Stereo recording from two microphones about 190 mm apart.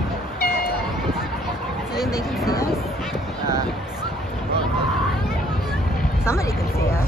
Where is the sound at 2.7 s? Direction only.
Centre (ahead or behind).